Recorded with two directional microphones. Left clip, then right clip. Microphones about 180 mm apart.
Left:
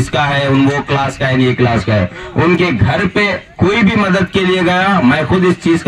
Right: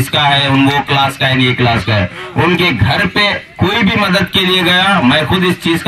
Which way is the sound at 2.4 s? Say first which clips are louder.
Right 1 dB; 45° right (ahead or behind).